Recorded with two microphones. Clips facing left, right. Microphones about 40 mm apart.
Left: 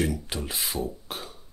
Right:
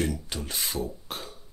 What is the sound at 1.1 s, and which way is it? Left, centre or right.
Music, centre.